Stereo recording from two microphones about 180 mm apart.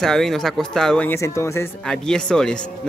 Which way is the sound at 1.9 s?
5° left (ahead or behind).